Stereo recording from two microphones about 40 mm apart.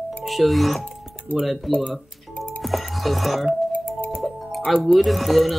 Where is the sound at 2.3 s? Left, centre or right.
Left.